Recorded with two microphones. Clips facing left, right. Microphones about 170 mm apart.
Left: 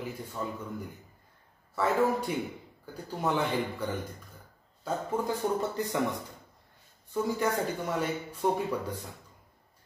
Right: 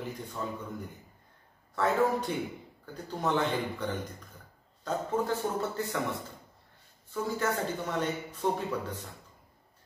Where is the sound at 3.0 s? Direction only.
10° left (ahead or behind).